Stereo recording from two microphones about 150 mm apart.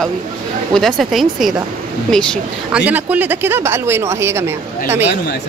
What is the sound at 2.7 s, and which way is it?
Speech, 10° right (ahead or behind).